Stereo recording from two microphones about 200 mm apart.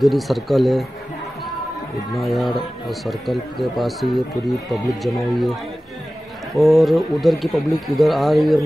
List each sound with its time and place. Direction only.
0.0 s speech: centre (ahead or behind)
2.1 s speech: centre (ahead or behind)